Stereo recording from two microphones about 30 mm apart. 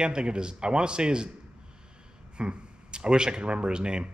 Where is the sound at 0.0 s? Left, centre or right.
Right.